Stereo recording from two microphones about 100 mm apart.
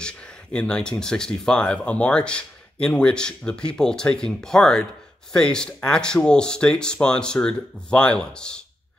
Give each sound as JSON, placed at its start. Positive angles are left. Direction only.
{"t": 0.0, "sound": "speech", "side_deg": 10}